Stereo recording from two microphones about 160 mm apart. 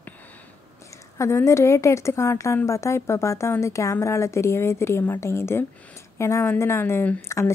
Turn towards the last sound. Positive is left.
turn(degrees=15)  # may be behind; listen again after turning